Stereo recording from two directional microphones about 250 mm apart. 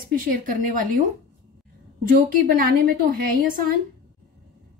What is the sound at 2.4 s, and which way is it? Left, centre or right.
A woman's voice, right.